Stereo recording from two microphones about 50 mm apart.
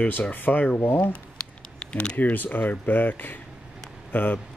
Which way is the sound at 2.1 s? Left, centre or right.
Left.